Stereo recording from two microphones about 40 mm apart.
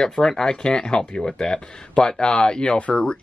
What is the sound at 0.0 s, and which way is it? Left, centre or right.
Speech, centre.